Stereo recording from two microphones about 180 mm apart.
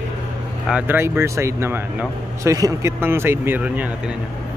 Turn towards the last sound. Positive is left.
turn(degrees=-10)  # may be behind; listen again after turning